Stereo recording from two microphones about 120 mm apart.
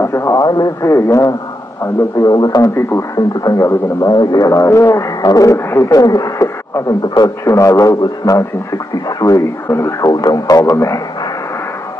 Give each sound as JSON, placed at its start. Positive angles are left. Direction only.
{"t": 0.0, "sound": "speech", "side_deg": 20}